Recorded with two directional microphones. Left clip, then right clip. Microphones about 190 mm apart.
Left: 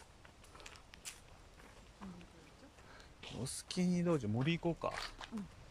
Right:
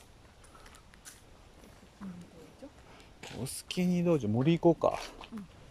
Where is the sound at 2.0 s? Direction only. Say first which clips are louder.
Right 5 dB; 10° left (ahead or behind).